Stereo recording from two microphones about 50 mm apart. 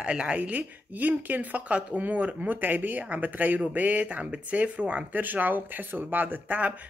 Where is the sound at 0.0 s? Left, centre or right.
Right.